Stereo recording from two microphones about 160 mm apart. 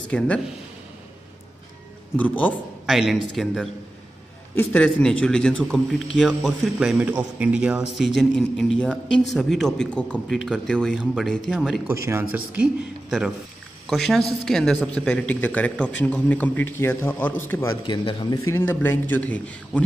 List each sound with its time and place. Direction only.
0.1 s a man's voice: 5° left (ahead or behind)
2.1 s speech: 10° left (ahead or behind)
2.9 s a man's voice: centre (ahead or behind)
11.9 s a man's voice: 15° right (ahead or behind)
13.8 s speech: centre (ahead or behind); by 17.7 s 15° left (ahead or behind)
17.8 s speech: 30° left (ahead or behind)
18.5 s speech: 15° left (ahead or behind)